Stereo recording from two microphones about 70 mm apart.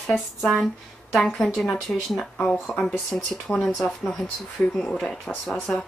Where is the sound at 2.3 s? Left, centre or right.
Centre.